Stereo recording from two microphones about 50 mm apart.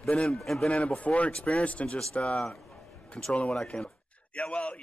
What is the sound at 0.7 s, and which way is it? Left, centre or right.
A man's voice, left.